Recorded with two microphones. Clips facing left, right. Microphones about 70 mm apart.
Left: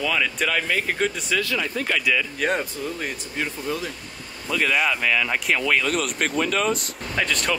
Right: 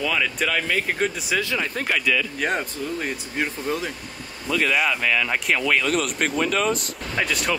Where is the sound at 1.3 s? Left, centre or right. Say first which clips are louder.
Even; right.